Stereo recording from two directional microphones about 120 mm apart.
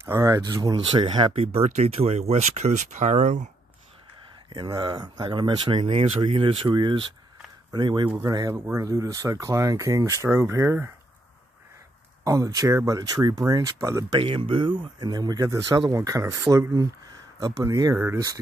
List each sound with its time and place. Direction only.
0.1 s speech: 30° right (ahead or behind)
0.7 s speech: 45° right (ahead or behind); by 3.4 s 85° right
4.5 s speech: 35° right (ahead or behind)
8.5 s speech: 20° right (ahead or behind)
12.3 s speech: 30° right (ahead or behind)
14.1 s speech: 50° right (ahead or behind); by 16.6 s 25° right (ahead or behind)
17.6 s speech: 30° right (ahead or behind)